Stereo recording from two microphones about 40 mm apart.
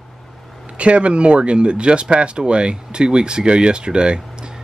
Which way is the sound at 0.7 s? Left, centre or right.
Right.